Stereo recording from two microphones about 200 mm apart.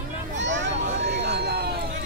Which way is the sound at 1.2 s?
55° right (ahead or behind).